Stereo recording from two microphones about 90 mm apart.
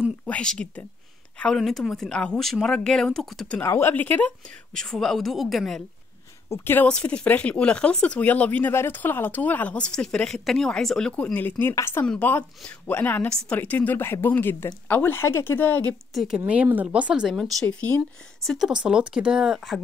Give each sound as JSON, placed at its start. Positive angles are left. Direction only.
{"t": 0.3, "sound": "speech", "side_deg": 10}
{"t": 3.6, "sound": "a woman's voice", "side_deg": 30}
{"t": 4.7, "sound": "speech", "side_deg": 5}
{"t": 6.5, "sound": "a woman's voice", "side_deg": 25}
{"t": 6.9, "sound": "speech", "side_deg": 15}
{"t": 11.3, "sound": "a woman's voice", "side_deg": 20}
{"t": 16.1, "sound": "a woman's voice", "side_deg": 0}
{"t": 16.3, "sound": "speech", "side_deg": -15}
{"t": 17.4, "sound": "speech", "side_deg": 10}
{"t": 18.4, "sound": "speech", "side_deg": 5}
{"t": 18.7, "sound": "speech", "side_deg": -10}